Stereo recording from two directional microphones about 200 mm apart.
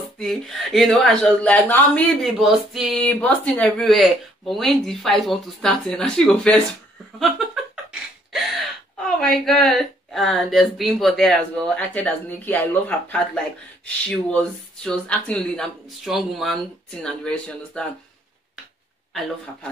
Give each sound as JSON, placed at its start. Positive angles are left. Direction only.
{"t": 0.2, "sound": "speech", "side_deg": 0}
{"t": 7.2, "sound": "a sound", "side_deg": 0}
{"t": 9.0, "sound": "speech", "side_deg": 0}
{"t": 19.1, "sound": "speech", "side_deg": 0}